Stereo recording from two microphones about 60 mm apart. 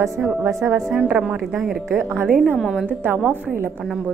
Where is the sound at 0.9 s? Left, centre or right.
Centre.